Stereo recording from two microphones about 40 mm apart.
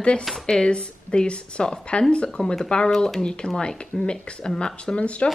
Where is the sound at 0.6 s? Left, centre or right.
Left.